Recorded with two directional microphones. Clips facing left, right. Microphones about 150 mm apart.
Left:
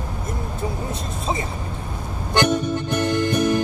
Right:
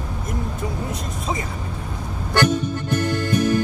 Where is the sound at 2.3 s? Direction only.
15° left (ahead or behind).